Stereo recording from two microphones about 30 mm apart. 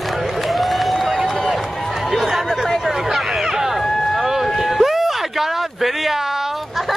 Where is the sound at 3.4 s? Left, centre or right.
Centre.